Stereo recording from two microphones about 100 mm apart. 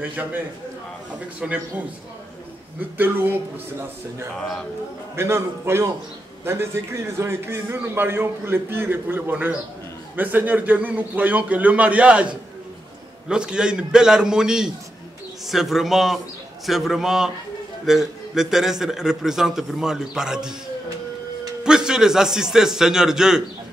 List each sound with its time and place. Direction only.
0.0 s a man's voice: 15° right (ahead or behind)
1.4 s a man's voice: 10° right (ahead or behind)
3.0 s a man's voice: 20° right (ahead or behind)
5.1 s a man's voice: 25° right (ahead or behind)
13.3 s a man's voice: 10° right (ahead or behind)
21.6 s a man's voice: 5° right (ahead or behind)